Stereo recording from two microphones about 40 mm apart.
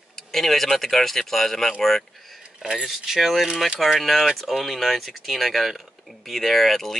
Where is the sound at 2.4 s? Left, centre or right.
Centre.